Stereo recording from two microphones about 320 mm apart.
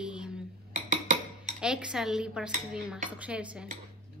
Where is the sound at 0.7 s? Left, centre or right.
Right.